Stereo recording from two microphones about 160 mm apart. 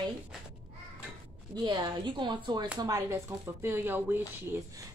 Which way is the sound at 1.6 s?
25° right (ahead or behind).